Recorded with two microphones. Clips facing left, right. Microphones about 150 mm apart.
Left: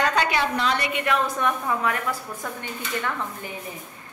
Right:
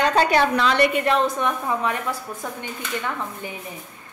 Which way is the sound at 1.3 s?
20° right (ahead or behind).